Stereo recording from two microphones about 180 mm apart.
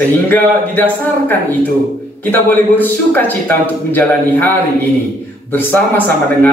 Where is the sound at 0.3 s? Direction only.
10° left (ahead or behind).